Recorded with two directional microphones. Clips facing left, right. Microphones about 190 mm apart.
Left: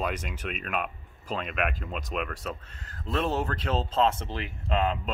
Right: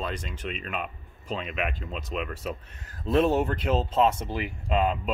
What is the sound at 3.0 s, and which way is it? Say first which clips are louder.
Speech: right 6 dB; 20° right (ahead or behind).